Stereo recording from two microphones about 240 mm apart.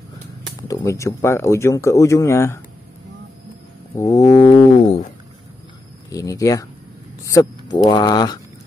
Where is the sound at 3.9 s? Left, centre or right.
Centre.